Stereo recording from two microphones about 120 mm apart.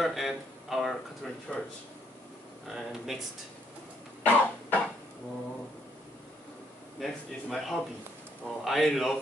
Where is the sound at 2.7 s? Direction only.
5° right (ahead or behind).